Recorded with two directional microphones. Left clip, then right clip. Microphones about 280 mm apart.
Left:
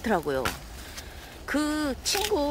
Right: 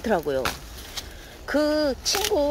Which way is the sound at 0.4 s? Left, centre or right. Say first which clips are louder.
Right 3 dB; right.